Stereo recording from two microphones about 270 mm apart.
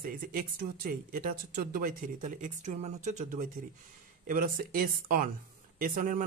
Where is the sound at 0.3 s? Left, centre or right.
Right.